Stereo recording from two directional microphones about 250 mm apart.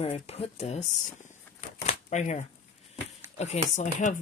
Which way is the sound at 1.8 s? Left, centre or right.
Left.